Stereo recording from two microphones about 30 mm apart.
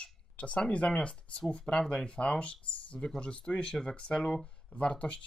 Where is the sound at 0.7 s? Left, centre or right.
Left.